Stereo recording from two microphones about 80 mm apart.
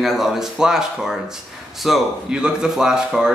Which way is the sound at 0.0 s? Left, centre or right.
Centre.